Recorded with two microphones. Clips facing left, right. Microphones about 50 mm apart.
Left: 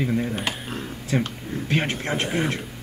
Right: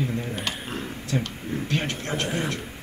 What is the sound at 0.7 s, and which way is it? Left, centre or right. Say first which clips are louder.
Speech: even; centre.